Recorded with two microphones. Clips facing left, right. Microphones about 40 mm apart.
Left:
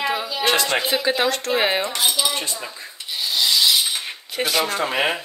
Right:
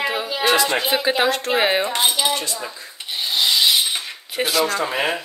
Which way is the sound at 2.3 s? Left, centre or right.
Left.